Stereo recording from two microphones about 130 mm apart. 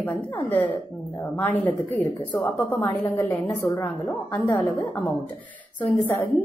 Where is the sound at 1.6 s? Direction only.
10° left (ahead or behind).